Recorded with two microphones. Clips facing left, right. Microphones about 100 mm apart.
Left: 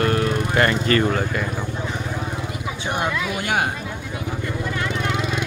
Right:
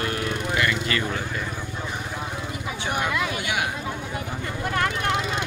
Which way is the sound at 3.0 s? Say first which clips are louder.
Left 2 dB; 40° left (ahead or behind).